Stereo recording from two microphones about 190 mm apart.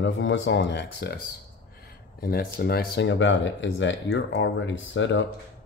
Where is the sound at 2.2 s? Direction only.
50° left (ahead or behind).